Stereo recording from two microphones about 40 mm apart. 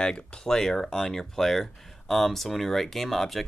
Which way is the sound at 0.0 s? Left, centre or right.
Left.